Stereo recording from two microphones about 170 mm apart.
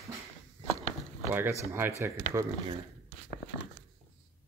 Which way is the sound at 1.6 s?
15° right (ahead or behind).